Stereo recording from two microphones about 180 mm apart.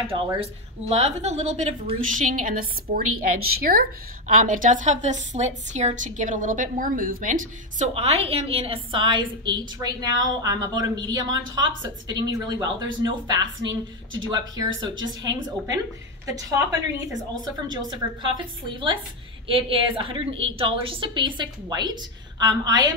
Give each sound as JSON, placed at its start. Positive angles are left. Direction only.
{"t": 0.1, "sound": "a woman's voice", "side_deg": -35}
{"t": 7.9, "sound": "a woman's voice", "side_deg": -35}
{"t": 13.7, "sound": "a woman's voice", "side_deg": -90}
{"t": 14.8, "sound": "a woman's voice", "side_deg": -25}